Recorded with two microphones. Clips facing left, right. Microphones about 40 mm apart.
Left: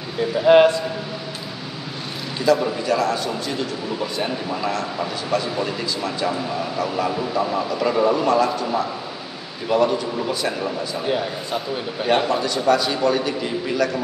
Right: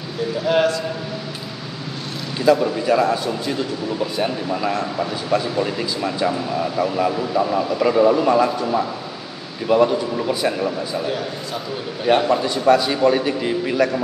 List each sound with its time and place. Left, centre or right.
0.5 s a man's voice: left
2.4 s speech: centre
4.0 s a man's voice: centre
11.1 s a man's voice: centre
12.3 s speech: centre